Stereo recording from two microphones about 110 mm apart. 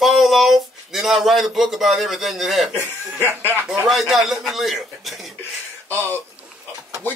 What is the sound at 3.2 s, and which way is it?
Speech, 20° right (ahead or behind).